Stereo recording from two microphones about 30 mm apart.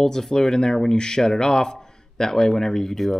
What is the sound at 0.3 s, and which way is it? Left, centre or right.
A man's voice, left.